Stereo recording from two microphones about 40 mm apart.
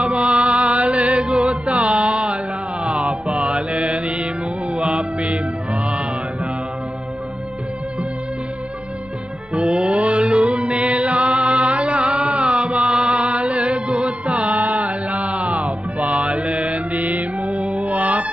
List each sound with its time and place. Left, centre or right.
0.0 s music: right
1.2 s music: right
1.7 s music: right
9.5 s music: right
13.3 s music: right
14.0 s mantra: right